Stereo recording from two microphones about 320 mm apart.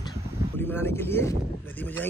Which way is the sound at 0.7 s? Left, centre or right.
Centre.